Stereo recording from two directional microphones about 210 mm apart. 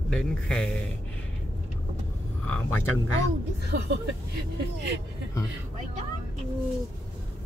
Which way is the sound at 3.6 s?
55° right (ahead or behind).